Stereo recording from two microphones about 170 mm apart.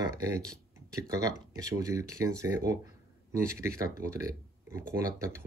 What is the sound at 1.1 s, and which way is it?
Speech, 20° right (ahead or behind).